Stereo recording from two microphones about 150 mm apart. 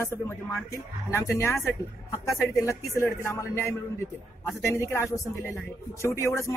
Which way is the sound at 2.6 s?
20° left (ahead or behind).